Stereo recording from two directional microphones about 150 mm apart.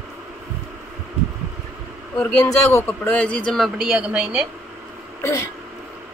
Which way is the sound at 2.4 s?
15° left (ahead or behind).